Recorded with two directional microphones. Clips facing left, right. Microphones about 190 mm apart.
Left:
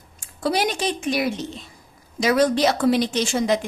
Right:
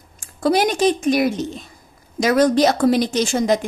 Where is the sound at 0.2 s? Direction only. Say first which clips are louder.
Right 5 dB; 50° right (ahead or behind).